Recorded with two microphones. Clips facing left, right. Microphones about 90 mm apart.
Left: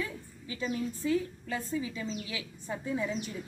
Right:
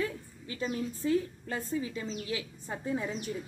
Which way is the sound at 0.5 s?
40° right (ahead or behind).